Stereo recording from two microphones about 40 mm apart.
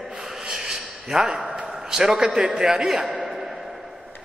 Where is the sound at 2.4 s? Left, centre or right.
Centre.